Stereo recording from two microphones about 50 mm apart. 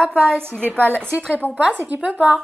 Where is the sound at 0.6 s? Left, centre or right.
Right.